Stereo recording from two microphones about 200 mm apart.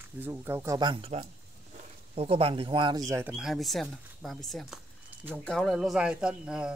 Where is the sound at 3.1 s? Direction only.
10° right (ahead or behind).